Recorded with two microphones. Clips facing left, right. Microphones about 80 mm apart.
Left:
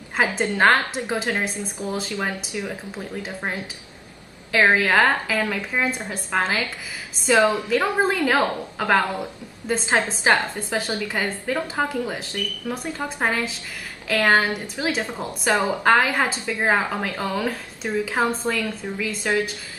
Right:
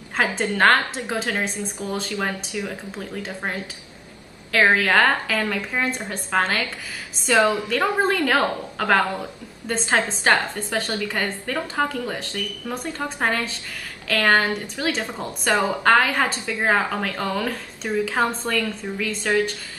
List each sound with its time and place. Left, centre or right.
0.2 s a woman's voice: centre
4.7 s a woman's voice: centre